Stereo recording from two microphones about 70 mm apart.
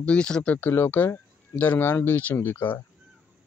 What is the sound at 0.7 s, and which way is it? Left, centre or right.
Speech, left.